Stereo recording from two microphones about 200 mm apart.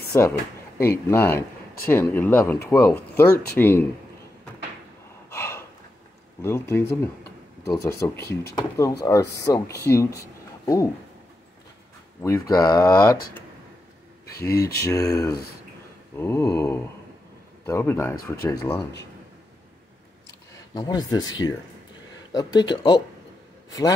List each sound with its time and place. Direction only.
0.1 s speech: 10° left (ahead or behind)
5.3 s gasp: 10° left (ahead or behind)
6.4 s speech: 10° left (ahead or behind)
12.2 s speech: 15° left (ahead or behind)
14.4 s speech: 15° left (ahead or behind)
20.7 s speech: 20° left (ahead or behind)